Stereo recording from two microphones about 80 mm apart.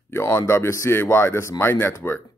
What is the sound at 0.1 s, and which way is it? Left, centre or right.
A man's voice, left.